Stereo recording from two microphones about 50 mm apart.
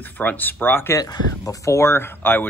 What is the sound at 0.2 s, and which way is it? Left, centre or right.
Speech, left.